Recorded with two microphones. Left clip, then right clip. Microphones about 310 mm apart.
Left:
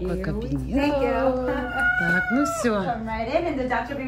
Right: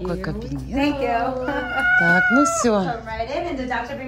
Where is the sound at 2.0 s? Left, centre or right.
Centre.